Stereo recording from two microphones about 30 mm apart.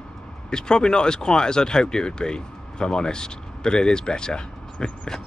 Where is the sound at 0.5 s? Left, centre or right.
Left.